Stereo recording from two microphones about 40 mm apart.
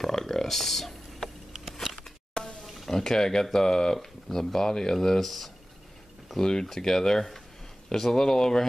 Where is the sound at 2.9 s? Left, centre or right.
Centre.